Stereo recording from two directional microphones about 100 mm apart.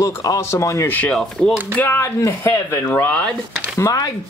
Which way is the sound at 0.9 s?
10° left (ahead or behind).